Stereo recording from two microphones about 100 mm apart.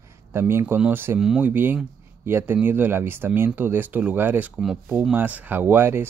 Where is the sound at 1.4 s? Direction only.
20° right (ahead or behind).